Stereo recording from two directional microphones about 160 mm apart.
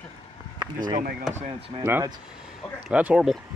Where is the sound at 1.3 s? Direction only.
40° right (ahead or behind).